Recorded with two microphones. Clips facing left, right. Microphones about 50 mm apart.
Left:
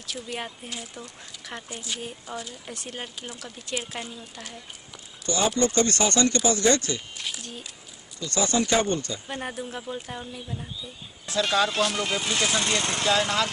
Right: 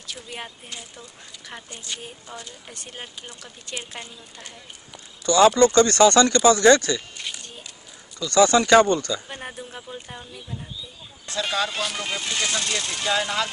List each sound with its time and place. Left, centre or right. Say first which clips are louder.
0.0 s speech: left 2 dB; centre
5.2 s speech: right 8 dB; right
7.2 s a sound: even; centre
8.2 s speech: right 8 dB; right
9.3 s speech: left 3 dB; centre
12.5 s speech: left 2 dB; left
13.0 s speech: even; centre